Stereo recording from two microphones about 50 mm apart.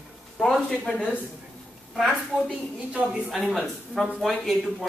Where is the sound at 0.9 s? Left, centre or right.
Left.